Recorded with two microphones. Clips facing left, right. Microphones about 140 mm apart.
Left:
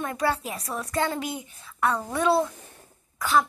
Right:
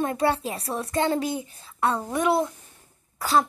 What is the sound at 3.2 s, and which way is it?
Cough, 35° right (ahead or behind).